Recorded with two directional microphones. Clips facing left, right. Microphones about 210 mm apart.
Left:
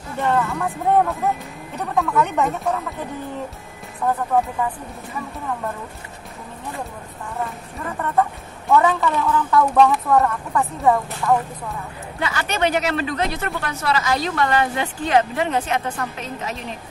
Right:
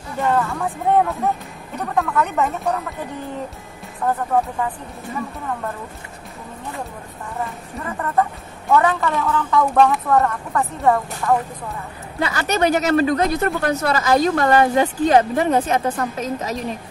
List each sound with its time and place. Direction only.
0.2 s speech: centre (ahead or behind)
8.6 s speech: centre (ahead or behind)
12.2 s speech: 40° right (ahead or behind)